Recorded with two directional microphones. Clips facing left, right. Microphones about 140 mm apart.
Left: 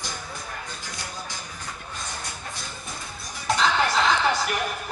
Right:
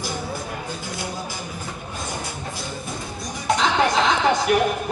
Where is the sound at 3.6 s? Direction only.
20° right (ahead or behind).